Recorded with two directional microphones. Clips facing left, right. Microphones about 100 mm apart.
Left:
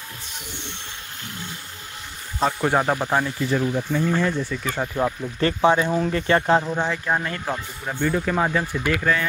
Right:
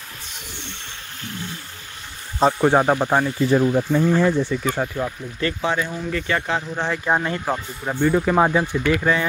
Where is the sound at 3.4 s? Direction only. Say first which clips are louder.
Right 5 dB; 35° right (ahead or behind).